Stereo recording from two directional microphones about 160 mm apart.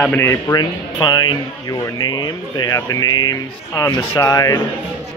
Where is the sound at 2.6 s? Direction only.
20° left (ahead or behind).